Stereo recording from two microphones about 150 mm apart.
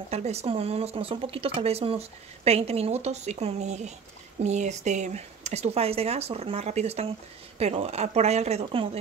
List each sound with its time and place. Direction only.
0.1 s speech: 45° right (ahead or behind)